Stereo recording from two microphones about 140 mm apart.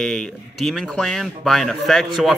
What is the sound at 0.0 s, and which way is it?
Speech, 5° left (ahead or behind).